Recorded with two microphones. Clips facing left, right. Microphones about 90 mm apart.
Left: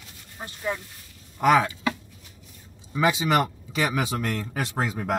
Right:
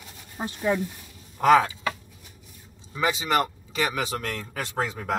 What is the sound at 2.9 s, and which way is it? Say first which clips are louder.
Speech: left 2 dB; 5° left (ahead or behind).